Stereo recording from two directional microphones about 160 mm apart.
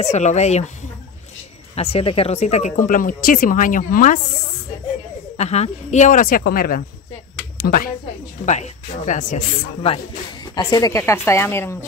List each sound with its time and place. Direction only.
0.0 s speech: 45° left (ahead or behind)
1.8 s speech: 40° left (ahead or behind); by 4.2 s 55° left (ahead or behind)
5.4 s speech: 45° left (ahead or behind); by 7.9 s 70° left (ahead or behind)
8.5 s speech: 50° left (ahead or behind)
10.4 s speech: 25° left (ahead or behind)